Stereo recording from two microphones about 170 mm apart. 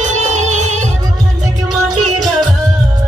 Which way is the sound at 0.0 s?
45° right (ahead or behind).